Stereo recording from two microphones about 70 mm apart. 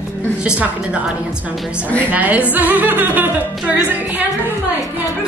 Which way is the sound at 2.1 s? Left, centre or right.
Right.